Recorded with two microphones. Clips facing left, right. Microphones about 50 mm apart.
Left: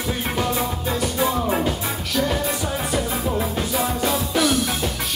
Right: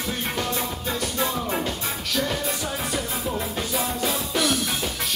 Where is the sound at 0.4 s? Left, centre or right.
Centre.